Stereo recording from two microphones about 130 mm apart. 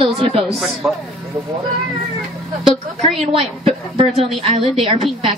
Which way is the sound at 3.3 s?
45° right (ahead or behind).